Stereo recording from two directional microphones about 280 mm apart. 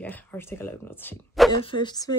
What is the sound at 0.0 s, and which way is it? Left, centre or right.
Speech, centre.